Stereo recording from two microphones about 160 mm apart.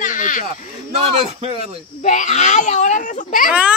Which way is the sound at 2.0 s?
50° left (ahead or behind).